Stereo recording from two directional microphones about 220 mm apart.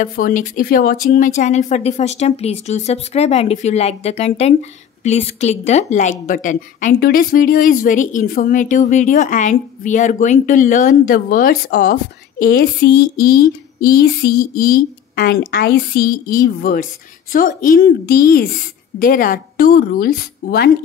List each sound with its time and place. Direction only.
0.0 s a woman's voice: 40° left (ahead or behind)